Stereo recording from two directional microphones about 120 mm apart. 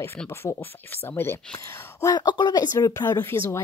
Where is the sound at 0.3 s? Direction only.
20° left (ahead or behind).